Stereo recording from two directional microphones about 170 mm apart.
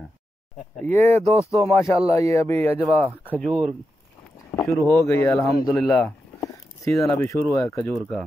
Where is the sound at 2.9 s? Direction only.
5° right (ahead or behind).